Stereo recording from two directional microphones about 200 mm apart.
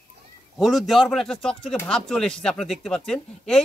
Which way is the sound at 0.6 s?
Centre (ahead or behind).